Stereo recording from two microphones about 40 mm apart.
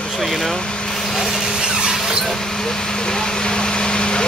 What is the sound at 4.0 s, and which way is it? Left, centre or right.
Vehicle, left.